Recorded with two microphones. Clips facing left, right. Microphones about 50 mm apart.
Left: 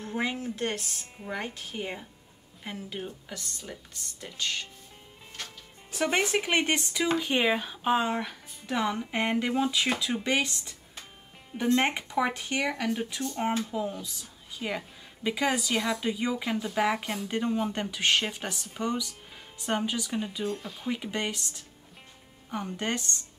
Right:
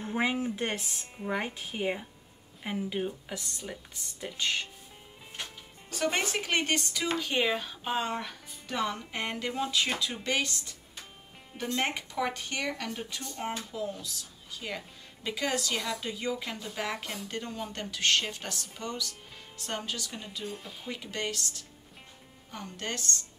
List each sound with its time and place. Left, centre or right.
0.0 s speech: centre
5.9 s speech: centre
13.4 s a woman's voice: left